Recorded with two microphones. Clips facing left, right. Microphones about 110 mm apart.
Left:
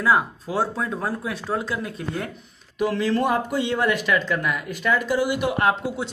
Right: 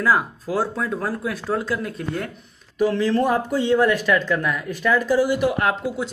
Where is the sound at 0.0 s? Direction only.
Centre (ahead or behind); by 5.8 s 20° left (ahead or behind).